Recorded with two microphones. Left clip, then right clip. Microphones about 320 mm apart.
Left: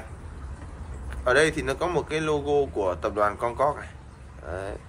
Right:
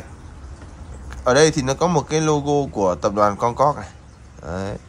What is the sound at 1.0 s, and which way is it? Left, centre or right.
A man's voice, centre.